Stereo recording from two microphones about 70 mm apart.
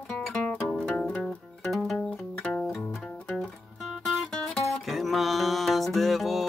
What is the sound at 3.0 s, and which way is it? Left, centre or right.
Music, centre.